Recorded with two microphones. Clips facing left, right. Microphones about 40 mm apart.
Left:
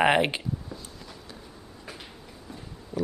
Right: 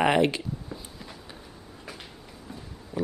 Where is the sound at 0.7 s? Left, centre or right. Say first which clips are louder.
Right 1 dB; centre.